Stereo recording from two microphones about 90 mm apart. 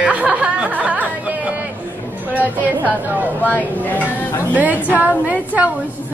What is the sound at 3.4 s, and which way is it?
Speech, 20° left (ahead or behind).